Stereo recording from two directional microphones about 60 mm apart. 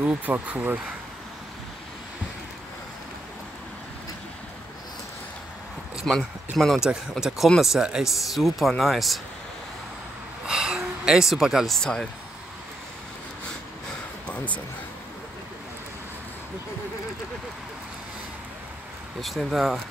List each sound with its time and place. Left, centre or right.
0.0 s speech: right
6.0 s speech: centre
6.8 s speech: centre
10.4 s a sound: centre
11.8 s speech: centre
19.2 s speech: centre